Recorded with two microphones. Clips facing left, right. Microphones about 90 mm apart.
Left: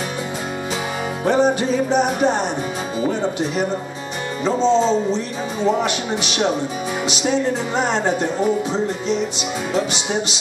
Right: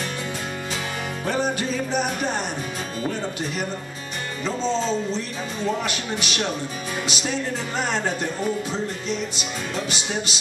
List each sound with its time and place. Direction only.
1.2 s music: 20° left (ahead or behind)